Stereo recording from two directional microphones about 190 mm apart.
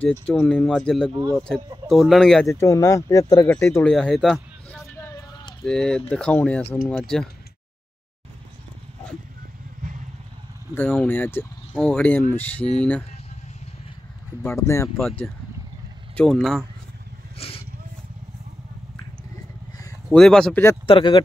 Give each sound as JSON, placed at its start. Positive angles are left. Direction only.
{"t": 0.0, "sound": "speech", "side_deg": 5}
{"t": 2.4, "sound": "speech", "side_deg": 15}
{"t": 4.9, "sound": "vehicle", "side_deg": 15}
{"t": 5.7, "sound": "speech", "side_deg": 5}
{"t": 10.7, "sound": "speech", "side_deg": 10}
{"t": 14.4, "sound": "speech", "side_deg": 15}
{"t": 15.0, "sound": "speech", "side_deg": 0}
{"t": 17.4, "sound": "vehicle", "side_deg": 30}
{"t": 20.1, "sound": "speech", "side_deg": 5}
{"t": 20.8, "sound": "speech", "side_deg": 25}